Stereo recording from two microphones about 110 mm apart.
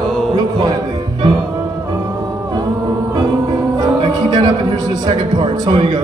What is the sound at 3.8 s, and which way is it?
Music, 40° right (ahead or behind).